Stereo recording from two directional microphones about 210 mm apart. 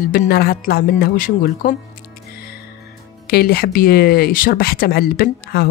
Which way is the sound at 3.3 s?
45° left (ahead or behind).